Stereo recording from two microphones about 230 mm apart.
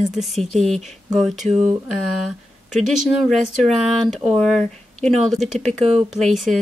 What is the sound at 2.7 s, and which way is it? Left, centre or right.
Speech, centre.